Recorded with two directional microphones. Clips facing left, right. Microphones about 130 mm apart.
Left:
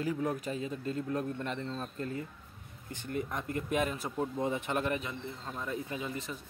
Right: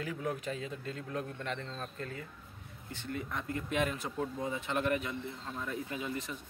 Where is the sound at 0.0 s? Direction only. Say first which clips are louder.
Left 4 dB; 35° left (ahead or behind).